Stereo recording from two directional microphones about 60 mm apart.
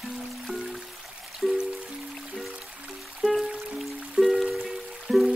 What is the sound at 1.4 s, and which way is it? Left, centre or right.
Music, centre.